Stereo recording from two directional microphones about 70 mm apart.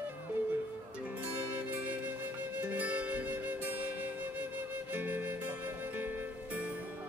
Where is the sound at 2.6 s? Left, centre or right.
Right.